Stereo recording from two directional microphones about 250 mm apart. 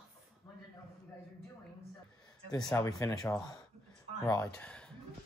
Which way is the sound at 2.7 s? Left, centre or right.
Centre.